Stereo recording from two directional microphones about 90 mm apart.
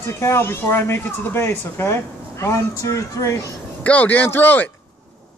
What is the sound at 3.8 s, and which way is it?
Speech, 15° left (ahead or behind).